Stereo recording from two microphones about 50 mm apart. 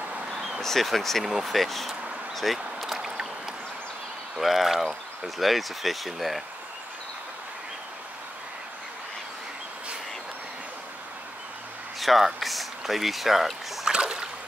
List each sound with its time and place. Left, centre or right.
0.0 s a sound: right
0.6 s speech: centre
4.4 s speech: centre
12.0 s speech: centre
13.9 s rowboat: centre